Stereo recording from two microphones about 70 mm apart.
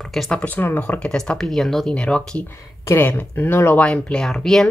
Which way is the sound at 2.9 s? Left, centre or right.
Left.